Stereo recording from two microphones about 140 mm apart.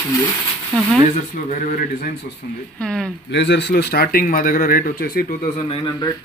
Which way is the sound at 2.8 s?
5° left (ahead or behind).